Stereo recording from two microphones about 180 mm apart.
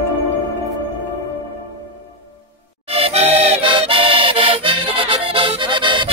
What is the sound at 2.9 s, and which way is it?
Accordion, 35° right (ahead or behind).